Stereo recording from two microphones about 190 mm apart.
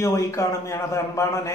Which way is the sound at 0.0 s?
15° left (ahead or behind).